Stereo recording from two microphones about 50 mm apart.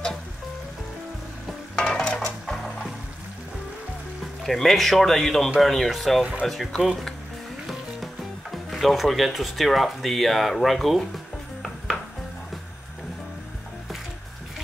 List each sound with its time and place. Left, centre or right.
1.8 s music: centre
4.4 s speech: centre